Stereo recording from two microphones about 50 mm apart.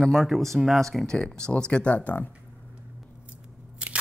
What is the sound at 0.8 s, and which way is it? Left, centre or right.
Speech, centre.